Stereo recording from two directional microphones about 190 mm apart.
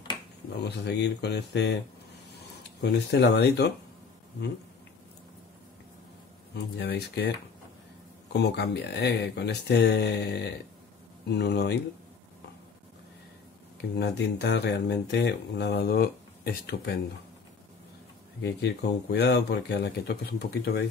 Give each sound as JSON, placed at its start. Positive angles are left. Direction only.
{"t": 0.7, "sound": "speech", "side_deg": 65}
{"t": 2.8, "sound": "speech", "side_deg": 60}
{"t": 6.5, "sound": "speech", "side_deg": 60}
{"t": 13.7, "sound": "speech", "side_deg": 60}
{"t": 18.4, "sound": "speech", "side_deg": 60}